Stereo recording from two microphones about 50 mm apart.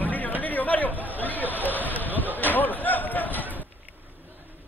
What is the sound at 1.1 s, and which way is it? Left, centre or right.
Hubbub, left.